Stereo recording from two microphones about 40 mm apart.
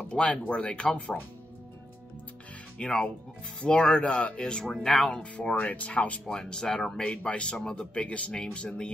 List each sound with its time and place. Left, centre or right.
0.1 s speech: left
2.8 s speech: left
5.1 s speech: left
6.2 s speech: centre
7.0 s speech: left